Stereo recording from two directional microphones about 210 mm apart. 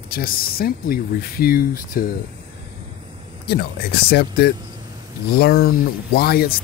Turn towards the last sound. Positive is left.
turn(degrees=45)  # may be behind; listen again after turning